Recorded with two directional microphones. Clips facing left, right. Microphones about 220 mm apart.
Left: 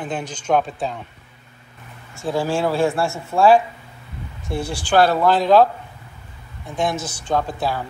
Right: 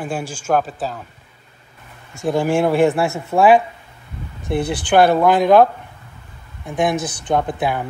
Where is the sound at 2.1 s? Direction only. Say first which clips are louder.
Right 4 dB; 15° right (ahead or behind).